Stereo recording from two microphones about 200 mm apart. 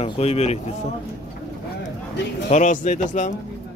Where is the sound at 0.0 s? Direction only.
30° left (ahead or behind).